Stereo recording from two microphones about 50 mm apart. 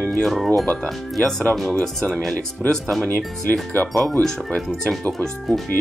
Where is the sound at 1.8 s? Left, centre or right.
Centre.